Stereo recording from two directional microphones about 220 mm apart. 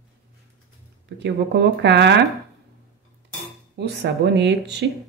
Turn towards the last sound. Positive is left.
turn(degrees=-50)  # may be behind; listen again after turning